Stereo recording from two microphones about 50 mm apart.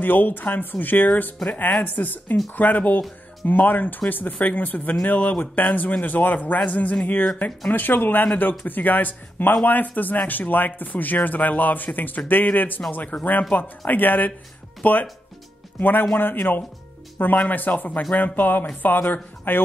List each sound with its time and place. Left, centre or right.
0.0 s speech: left